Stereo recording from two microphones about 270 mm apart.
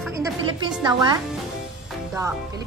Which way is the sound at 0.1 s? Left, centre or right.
Centre.